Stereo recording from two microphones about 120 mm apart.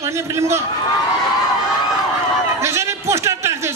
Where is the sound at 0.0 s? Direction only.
25° right (ahead or behind).